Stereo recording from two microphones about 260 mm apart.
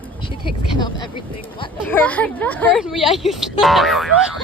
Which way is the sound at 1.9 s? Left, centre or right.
Centre.